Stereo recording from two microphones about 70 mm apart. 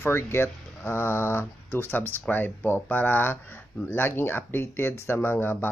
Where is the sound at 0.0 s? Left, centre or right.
Left.